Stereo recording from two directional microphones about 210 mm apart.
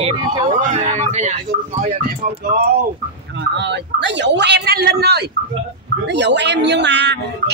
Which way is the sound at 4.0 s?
55° right (ahead or behind).